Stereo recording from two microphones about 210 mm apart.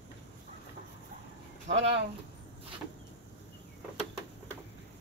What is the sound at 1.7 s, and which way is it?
Speech, 60° right (ahead or behind).